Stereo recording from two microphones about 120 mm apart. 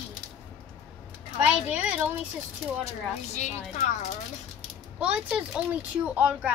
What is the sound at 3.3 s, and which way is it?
Speech, 80° left.